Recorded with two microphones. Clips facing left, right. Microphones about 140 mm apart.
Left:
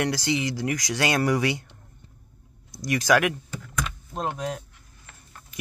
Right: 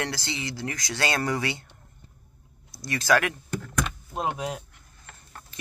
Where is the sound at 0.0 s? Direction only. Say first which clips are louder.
Left 7 dB; 15° left (ahead or behind).